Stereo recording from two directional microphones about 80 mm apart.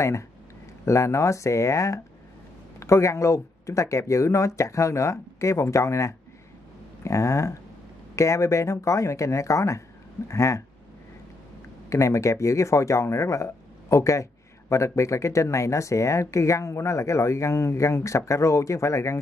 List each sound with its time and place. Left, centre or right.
0.8 s speech: left
11.9 s speech: left